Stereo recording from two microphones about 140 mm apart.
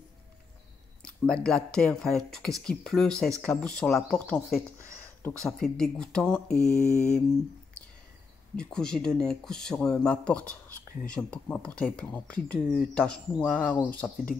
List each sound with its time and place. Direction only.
1.0 s speech: 5° left (ahead or behind)
6.6 s mantra: 55° left (ahead or behind)
8.5 s speech: 5° left (ahead or behind)